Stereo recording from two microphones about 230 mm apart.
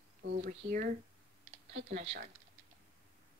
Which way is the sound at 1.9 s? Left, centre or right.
Right.